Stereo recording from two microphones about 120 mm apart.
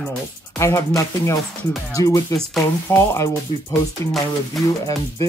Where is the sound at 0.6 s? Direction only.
25° left (ahead or behind).